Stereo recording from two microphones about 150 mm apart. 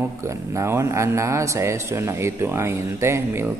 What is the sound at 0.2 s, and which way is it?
Speech, 20° right (ahead or behind).